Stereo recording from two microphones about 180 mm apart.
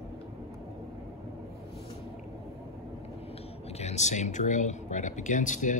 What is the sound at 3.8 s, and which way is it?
Speech, 40° left (ahead or behind).